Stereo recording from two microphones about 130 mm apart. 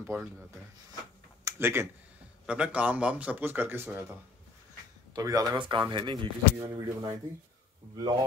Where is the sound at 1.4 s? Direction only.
20° right (ahead or behind).